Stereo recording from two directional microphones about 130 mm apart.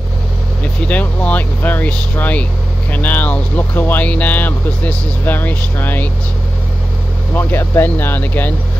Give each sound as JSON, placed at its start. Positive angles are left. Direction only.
{"t": 0.8, "sound": "speech", "side_deg": 10}
{"t": 7.3, "sound": "speech", "side_deg": 15}